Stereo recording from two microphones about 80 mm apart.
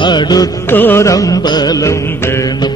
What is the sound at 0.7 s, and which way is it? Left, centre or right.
Music, left.